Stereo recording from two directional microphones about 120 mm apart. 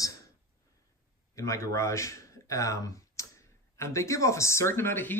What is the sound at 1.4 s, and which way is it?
Speech, 25° left (ahead or behind).